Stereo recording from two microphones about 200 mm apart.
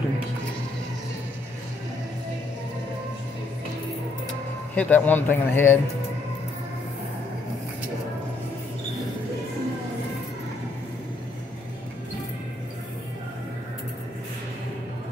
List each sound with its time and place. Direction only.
4.3 s speech: 5° left (ahead or behind)